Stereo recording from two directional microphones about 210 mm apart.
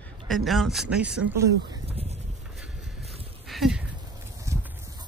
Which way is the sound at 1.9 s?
30° right (ahead or behind).